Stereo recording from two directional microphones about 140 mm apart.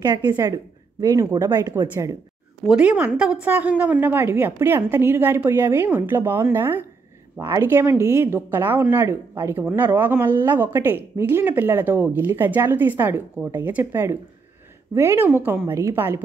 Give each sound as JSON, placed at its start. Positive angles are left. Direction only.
{"t": 0.0, "sound": "speech", "side_deg": -30}
{"t": 2.7, "sound": "speech", "side_deg": -10}